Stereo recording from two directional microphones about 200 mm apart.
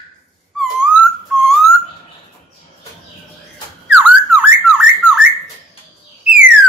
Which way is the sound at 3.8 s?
5° right (ahead or behind).